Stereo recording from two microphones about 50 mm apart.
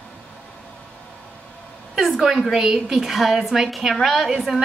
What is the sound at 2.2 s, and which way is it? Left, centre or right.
A woman's voice, centre.